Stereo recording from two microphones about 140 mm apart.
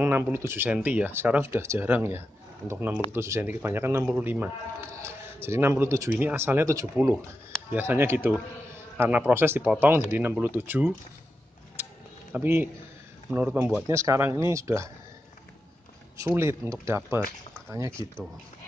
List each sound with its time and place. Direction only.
0.0 s speech: 15° right (ahead or behind)
11.7 s a sound: 15° right (ahead or behind)
13.3 s speech: 10° right (ahead or behind)
13.8 s speech: 20° right (ahead or behind)
16.2 s speech: 20° right (ahead or behind)